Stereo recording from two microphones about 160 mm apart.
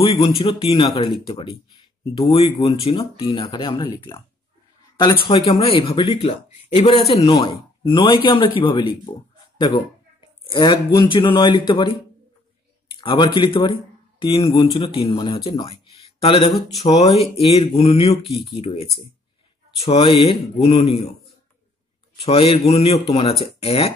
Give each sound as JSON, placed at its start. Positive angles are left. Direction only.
{"t": 0.4, "sound": "speech", "side_deg": 35}
{"t": 5.2, "sound": "speech", "side_deg": 30}
{"t": 10.4, "sound": "speech", "side_deg": 30}
{"t": 12.9, "sound": "speech", "side_deg": 30}
{"t": 22.2, "sound": "speech", "side_deg": 35}